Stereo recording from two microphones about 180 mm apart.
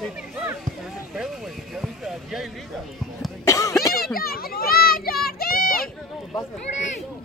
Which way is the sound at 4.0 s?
55° left (ahead or behind).